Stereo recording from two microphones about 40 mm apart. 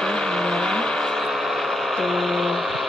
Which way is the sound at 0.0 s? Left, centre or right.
Centre.